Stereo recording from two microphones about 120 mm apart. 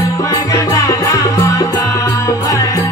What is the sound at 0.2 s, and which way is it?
Music, 30° left (ahead or behind).